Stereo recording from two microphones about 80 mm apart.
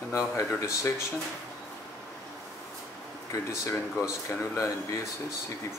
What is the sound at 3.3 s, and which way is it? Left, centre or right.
Speech, left.